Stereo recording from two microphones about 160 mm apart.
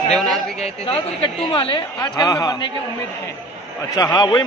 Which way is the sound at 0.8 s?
35° left (ahead or behind).